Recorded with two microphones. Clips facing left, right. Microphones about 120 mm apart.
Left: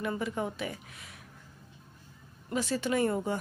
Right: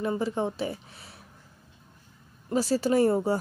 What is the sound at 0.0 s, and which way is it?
Speech, 30° right (ahead or behind).